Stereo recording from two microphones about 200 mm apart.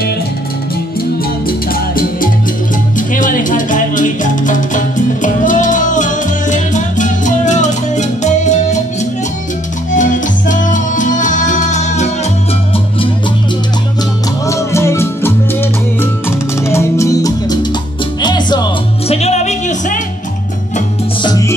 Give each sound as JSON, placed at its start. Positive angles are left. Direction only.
{"t": 3.2, "sound": "music", "side_deg": 40}
{"t": 9.9, "sound": "music", "side_deg": 40}
{"t": 14.5, "sound": "music", "side_deg": 15}
{"t": 21.2, "sound": "music", "side_deg": 20}